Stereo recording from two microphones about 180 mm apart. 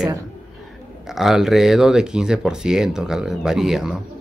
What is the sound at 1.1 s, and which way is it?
Speech, centre (ahead or behind).